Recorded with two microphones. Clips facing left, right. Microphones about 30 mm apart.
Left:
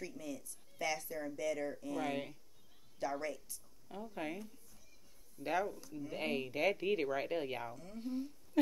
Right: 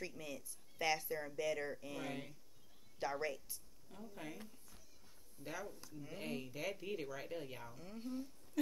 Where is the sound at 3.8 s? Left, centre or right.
Left.